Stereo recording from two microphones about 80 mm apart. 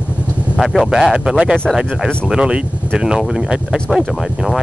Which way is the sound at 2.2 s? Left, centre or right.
Centre.